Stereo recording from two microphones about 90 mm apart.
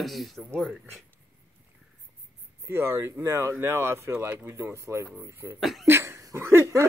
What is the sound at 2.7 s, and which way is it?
Speech, 25° right (ahead or behind).